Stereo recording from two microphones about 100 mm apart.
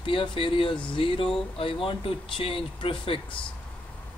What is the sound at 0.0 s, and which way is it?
Speech, 60° left (ahead or behind).